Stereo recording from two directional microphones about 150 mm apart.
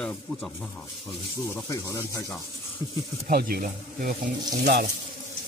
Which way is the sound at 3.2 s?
80° right.